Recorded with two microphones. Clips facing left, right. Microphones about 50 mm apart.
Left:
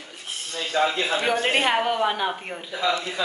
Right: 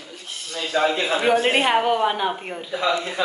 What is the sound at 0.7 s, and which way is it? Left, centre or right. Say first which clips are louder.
Speech: right 2 dB; right.